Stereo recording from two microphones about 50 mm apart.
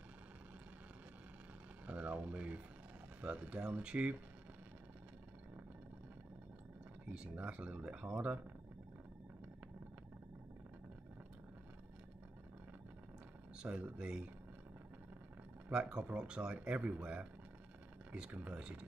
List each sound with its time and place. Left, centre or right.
1.9 s a sound: right
3.2 s speech: right
7.1 s speech: right
13.6 s speech: right
15.7 s speech: right
18.3 s speech: right
18.6 s speech: centre